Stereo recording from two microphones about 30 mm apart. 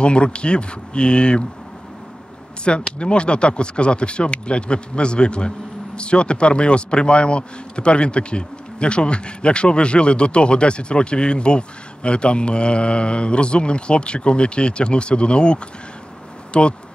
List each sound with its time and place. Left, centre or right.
0.0 s a man's voice: left
2.6 s a man's voice: left